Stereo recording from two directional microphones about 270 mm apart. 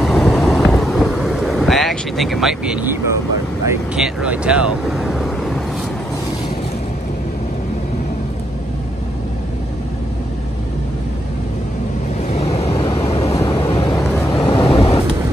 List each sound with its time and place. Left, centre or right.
0.0 s boat: centre
3.6 s speech: centre
12.3 s vehicle: left